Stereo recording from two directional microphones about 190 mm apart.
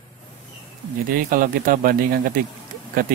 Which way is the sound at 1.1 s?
45° right (ahead or behind).